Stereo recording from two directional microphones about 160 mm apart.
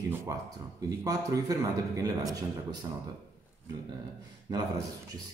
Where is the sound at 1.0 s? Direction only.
20° right (ahead or behind).